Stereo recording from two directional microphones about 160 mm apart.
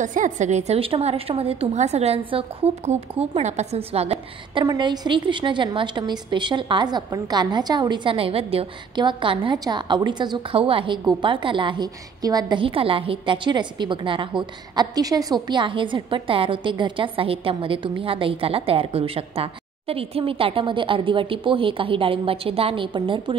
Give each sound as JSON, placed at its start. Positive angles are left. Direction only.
{"t": 0.0, "sound": "a woman's voice", "side_deg": -50}
{"t": 4.6, "sound": "a woman's voice", "side_deg": -25}